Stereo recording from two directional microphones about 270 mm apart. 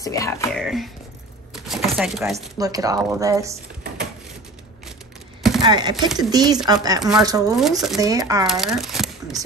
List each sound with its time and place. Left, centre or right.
0.0 s speech: centre
0.5 s speech: centre
1.5 s a sound: centre
2.5 s speech: centre
5.6 s chopping: centre
6.1 s speech: centre
7.0 s speech: centre
7.2 s speech: centre
7.5 s speech: centre
8.0 s speech: centre
8.5 s speech: centre